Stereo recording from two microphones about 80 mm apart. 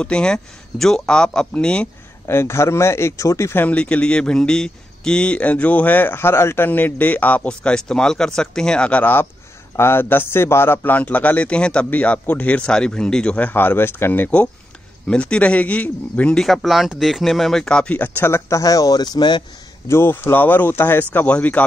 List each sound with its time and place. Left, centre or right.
0.0 s a man's voice: centre
2.2 s speech: left
3.6 s a man's voice: centre
7.4 s a man's voice: centre; by 14.3 s left
15.0 s a man's voice: centre
16.3 s speech: centre; by 18.4 s left
18.5 s speech: left
19.9 s a man's voice: left